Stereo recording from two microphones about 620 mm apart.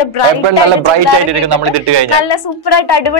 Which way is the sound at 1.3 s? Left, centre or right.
Right.